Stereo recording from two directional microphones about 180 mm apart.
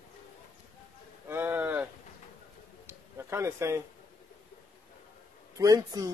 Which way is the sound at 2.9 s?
15° right (ahead or behind).